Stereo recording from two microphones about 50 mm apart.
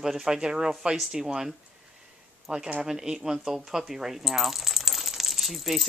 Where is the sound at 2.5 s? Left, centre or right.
Right.